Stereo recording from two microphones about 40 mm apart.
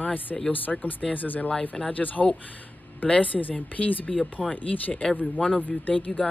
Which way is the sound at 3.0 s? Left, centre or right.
Left.